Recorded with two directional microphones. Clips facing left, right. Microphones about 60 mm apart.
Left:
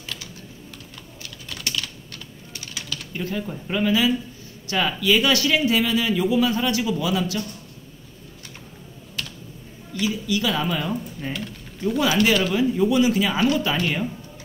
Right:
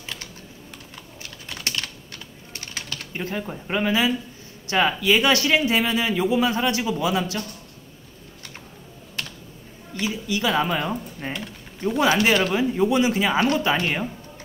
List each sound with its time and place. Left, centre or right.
0.9 s typing: right
4.6 s a man's voice: right
9.9 s a man's voice: right